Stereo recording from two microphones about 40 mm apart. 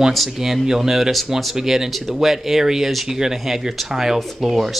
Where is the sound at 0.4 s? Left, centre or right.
Centre.